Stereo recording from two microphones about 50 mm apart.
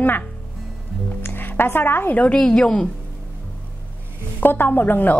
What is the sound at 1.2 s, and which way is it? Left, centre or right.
Music, left.